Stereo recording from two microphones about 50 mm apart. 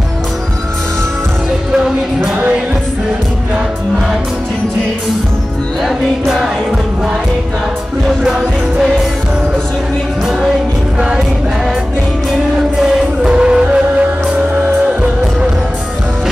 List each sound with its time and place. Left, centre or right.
5.9 s music: centre
11.0 s music: centre
12.8 s music: centre